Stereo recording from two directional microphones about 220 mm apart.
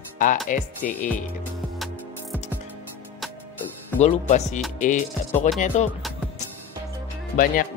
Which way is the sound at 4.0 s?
30° left (ahead or behind).